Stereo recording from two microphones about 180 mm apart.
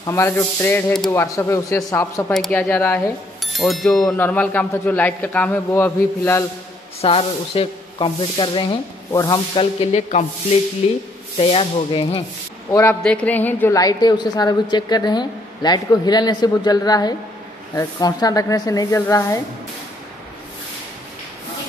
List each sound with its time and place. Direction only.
0.0 s a man's voice: 15° left (ahead or behind)
2.3 s a man's voice: 5° left (ahead or behind)
7.0 s speech: 35° left (ahead or behind)
13.0 s a woman's voice: 5° left (ahead or behind)